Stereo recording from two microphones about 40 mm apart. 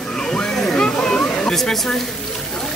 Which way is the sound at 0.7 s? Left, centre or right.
Centre.